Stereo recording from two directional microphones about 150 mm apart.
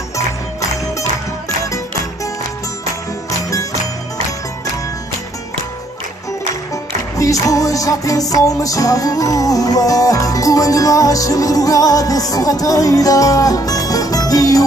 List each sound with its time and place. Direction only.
6.7 s music: 20° left (ahead or behind)